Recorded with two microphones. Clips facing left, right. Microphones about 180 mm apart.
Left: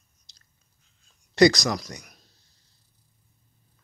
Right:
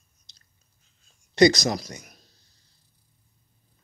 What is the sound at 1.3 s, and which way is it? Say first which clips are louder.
Speech: even; 20° right (ahead or behind).